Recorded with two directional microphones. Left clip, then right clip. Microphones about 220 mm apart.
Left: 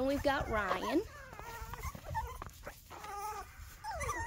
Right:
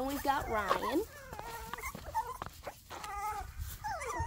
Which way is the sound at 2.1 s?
25° right (ahead or behind).